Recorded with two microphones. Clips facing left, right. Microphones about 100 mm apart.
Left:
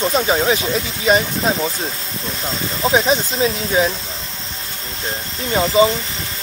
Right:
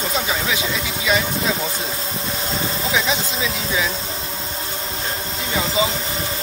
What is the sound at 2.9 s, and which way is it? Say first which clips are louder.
Speech: left 7 dB; 40° left (ahead or behind).